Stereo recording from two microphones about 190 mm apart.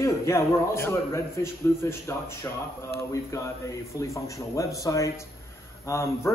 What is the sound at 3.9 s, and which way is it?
A man's voice, 15° left (ahead or behind).